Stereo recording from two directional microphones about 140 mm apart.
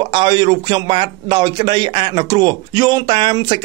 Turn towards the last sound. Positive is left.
turn(degrees=-35)  # may be behind; listen again after turning